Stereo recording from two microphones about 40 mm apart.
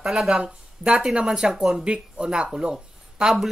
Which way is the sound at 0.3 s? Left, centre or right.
Right.